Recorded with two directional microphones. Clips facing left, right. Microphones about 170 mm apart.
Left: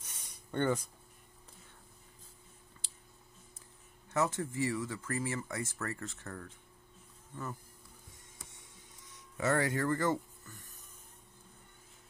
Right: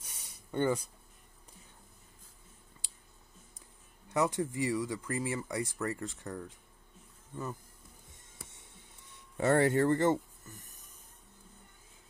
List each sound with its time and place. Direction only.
0.0 s a sound: 10° right (ahead or behind)
4.1 s speech: 15° right (ahead or behind)
8.4 s music: 25° right (ahead or behind)
9.4 s speech: 30° right (ahead or behind)